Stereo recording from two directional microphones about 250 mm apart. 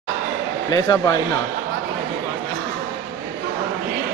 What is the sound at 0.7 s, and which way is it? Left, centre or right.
Speech, centre.